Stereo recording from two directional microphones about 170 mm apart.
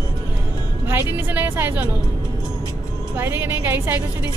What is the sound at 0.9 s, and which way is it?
A woman's voice, 15° right (ahead or behind).